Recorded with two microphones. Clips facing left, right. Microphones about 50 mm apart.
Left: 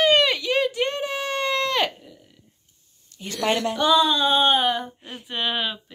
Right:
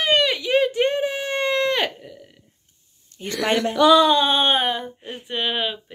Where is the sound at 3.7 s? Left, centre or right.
Right.